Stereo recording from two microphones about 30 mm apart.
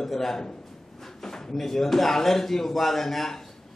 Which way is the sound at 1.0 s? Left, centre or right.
Centre.